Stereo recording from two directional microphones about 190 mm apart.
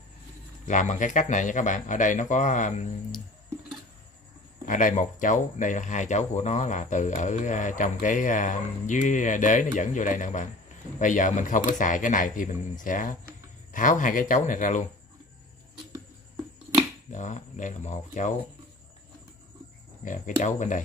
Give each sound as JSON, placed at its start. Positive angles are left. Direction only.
{"t": 0.7, "sound": "speech", "side_deg": 40}
{"t": 4.6, "sound": "speech", "side_deg": 45}
{"t": 17.1, "sound": "speech", "side_deg": 40}
{"t": 20.1, "sound": "speech", "side_deg": 40}